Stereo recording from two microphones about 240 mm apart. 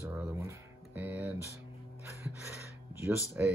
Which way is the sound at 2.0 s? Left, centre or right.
Centre.